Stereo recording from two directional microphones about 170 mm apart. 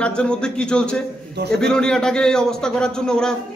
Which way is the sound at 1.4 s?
75° right (ahead or behind).